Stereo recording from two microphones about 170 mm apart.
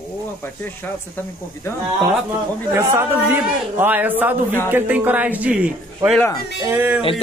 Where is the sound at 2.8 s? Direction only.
15° right (ahead or behind).